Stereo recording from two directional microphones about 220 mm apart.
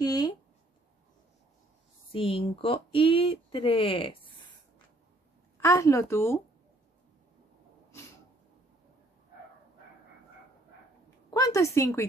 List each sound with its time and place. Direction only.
0.0 s a sound: 20° left (ahead or behind)
2.1 s speech: 25° left (ahead or behind)
5.6 s a woman's voice: 15° left (ahead or behind)
11.2 s a woman's voice: 15° left (ahead or behind)